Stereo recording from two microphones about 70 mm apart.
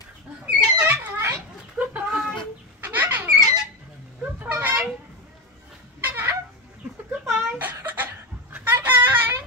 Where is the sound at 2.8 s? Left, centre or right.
Right.